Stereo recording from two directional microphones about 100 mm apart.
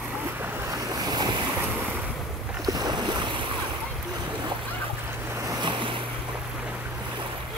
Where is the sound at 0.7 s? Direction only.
40° right (ahead or behind).